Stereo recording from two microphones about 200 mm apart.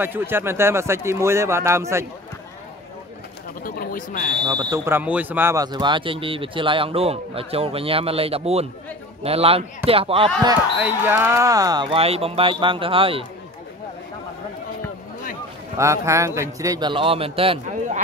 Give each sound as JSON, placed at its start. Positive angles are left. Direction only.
{"t": 0.0, "sound": "a man's voice", "side_deg": -10}
{"t": 3.6, "sound": "speech", "side_deg": 45}
{"t": 4.5, "sound": "speech", "side_deg": -20}
{"t": 10.8, "sound": "speech", "side_deg": -10}
{"t": 15.8, "sound": "a man's voice", "side_deg": -15}